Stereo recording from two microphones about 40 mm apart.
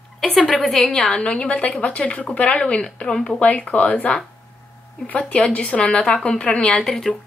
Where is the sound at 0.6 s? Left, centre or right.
Centre.